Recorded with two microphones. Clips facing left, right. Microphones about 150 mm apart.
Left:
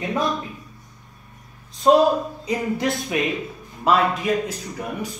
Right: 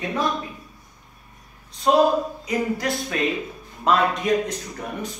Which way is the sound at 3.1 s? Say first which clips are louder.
Even; 15° left (ahead or behind).